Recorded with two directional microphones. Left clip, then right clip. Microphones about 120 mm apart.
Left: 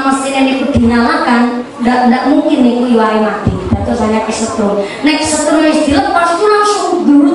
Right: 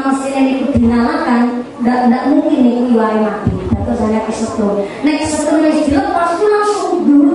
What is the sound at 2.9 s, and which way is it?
Speech, 20° right (ahead or behind).